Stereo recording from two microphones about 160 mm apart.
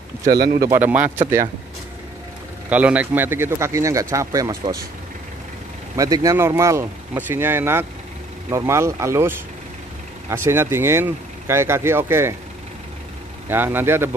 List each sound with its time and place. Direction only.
0.6 s speech: 15° right (ahead or behind)
2.7 s speech: 10° right (ahead or behind)
5.9 s speech: 20° right (ahead or behind)
13.5 s speech: 15° right (ahead or behind)